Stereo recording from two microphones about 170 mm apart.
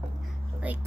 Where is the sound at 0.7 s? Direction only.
10° right (ahead or behind).